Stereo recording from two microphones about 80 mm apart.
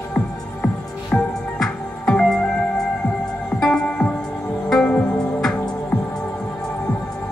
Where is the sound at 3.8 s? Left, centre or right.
Centre.